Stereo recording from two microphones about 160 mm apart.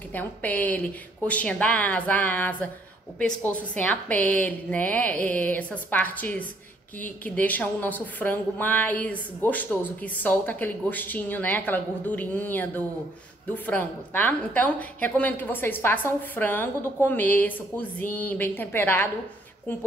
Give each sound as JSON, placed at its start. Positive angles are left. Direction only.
{"t": 0.1, "sound": "a woman's voice", "side_deg": 10}